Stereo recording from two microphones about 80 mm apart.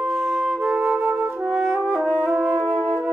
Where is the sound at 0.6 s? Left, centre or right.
Centre.